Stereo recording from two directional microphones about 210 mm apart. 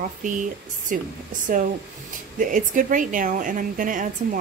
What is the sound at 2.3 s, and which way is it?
Speech, 40° right (ahead or behind).